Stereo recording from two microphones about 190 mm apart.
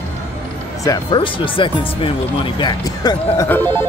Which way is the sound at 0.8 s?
20° left (ahead or behind).